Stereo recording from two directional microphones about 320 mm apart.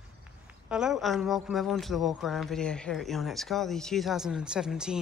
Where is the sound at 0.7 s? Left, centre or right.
Centre.